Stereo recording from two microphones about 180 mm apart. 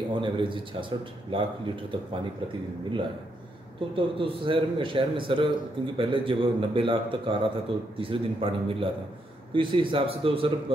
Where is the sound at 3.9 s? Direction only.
30° right (ahead or behind).